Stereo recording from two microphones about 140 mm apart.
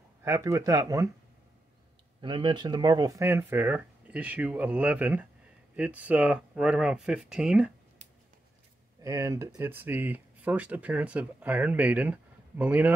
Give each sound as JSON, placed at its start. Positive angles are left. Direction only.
{"t": 0.2, "sound": "speech", "side_deg": -20}
{"t": 2.2, "sound": "speech", "side_deg": -35}
{"t": 9.0, "sound": "speech", "side_deg": -25}